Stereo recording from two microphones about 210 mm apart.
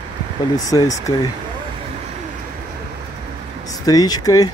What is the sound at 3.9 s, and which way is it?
Speech, 15° left (ahead or behind).